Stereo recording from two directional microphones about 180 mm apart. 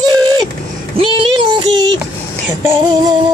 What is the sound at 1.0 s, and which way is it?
Child singing, 30° right (ahead or behind).